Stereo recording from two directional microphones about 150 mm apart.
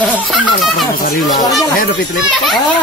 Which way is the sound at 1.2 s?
25° left (ahead or behind).